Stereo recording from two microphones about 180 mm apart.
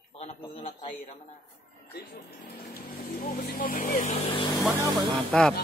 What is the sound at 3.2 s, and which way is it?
A man's voice, 50° left (ahead or behind).